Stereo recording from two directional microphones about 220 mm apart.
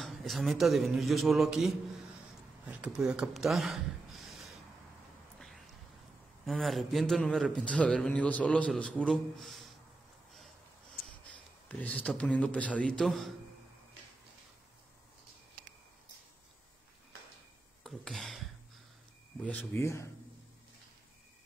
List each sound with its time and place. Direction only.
0.0 s a man's voice: centre (ahead or behind)
6.4 s a man's voice: centre (ahead or behind)
11.2 s a man's voice: 5° left (ahead or behind)
17.8 s a man's voice: centre (ahead or behind)
19.4 s speech: 10° left (ahead or behind)